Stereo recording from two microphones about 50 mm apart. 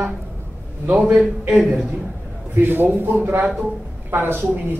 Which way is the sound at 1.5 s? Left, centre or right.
Centre.